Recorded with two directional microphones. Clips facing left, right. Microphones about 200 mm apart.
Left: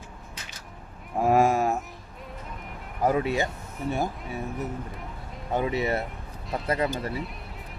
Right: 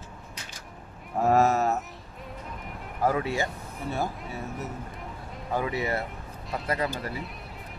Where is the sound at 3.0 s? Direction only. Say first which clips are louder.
Left 2 dB; 20° left (ahead or behind).